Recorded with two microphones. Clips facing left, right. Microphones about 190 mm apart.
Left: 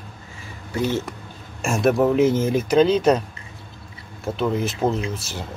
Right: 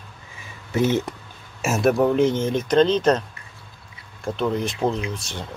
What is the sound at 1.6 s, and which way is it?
Speech, centre (ahead or behind).